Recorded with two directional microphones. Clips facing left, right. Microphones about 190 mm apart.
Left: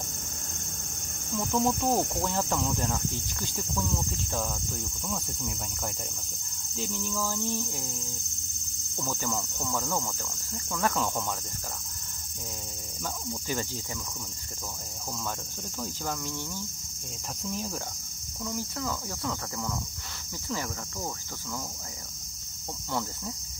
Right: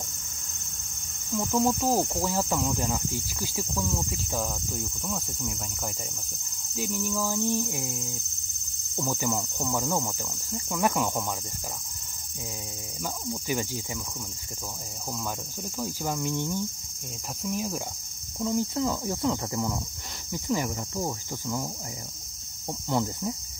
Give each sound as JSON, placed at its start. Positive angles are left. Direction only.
{"t": 1.5, "sound": "speech", "side_deg": 0}
{"t": 13.0, "sound": "speech", "side_deg": -15}
{"t": 15.8, "sound": "speech", "side_deg": -15}
{"t": 18.4, "sound": "cricket", "side_deg": -20}
{"t": 20.4, "sound": "speech", "side_deg": -15}
{"t": 22.8, "sound": "speech", "side_deg": -15}